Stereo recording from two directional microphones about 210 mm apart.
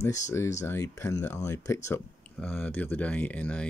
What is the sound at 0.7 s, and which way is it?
Speech, 10° left (ahead or behind).